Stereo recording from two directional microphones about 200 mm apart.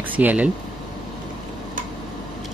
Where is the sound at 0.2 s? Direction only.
10° right (ahead or behind).